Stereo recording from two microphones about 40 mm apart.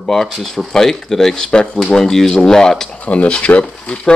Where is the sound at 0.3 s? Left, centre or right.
Centre.